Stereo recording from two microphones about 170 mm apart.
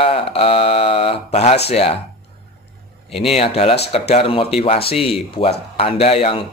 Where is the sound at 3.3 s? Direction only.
35° left (ahead or behind).